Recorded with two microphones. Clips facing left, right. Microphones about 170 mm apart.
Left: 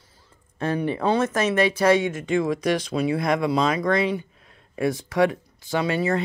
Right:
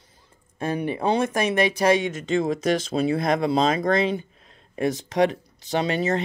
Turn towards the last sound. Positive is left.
turn(degrees=-20)  # may be behind; listen again after turning